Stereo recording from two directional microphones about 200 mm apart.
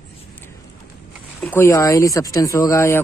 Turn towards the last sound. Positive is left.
turn(degrees=15)  # may be behind; listen again after turning